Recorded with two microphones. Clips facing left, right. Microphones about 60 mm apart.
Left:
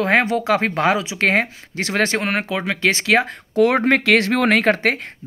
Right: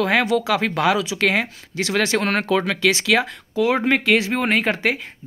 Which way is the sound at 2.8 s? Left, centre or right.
Left.